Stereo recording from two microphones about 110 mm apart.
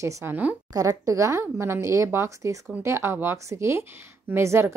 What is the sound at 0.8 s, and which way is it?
A woman's voice, 30° right (ahead or behind).